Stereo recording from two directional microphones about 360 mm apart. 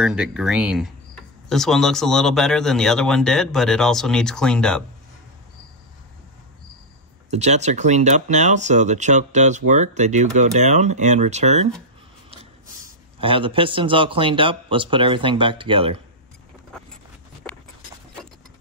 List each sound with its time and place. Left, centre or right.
0.0 s speech: centre
7.2 s speech: centre
13.2 s a man's voice: centre